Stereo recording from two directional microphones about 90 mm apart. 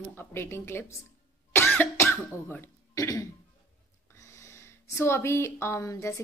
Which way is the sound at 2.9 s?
35° left (ahead or behind).